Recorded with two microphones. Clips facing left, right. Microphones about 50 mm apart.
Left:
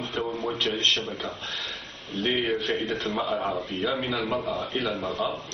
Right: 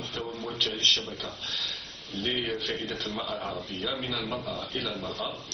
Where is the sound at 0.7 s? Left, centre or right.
Left.